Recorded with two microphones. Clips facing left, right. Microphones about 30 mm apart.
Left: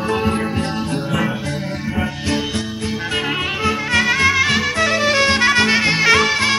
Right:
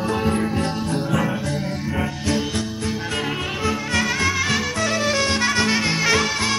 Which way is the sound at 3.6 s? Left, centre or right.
Left.